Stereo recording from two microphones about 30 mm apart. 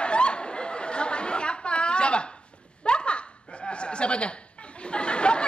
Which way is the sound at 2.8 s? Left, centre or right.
Left.